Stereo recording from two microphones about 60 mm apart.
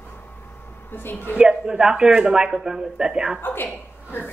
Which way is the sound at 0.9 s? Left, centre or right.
Left.